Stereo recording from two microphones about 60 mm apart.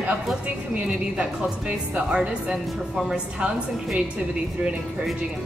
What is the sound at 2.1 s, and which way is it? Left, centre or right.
Speech, centre.